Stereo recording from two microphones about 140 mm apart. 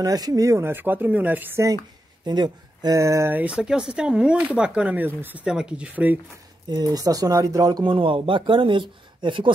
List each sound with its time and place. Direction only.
0.0 s speech: 25° right (ahead or behind)
2.2 s speech: 30° right (ahead or behind); by 6.1 s 10° right (ahead or behind)
6.7 s speech: 25° right (ahead or behind)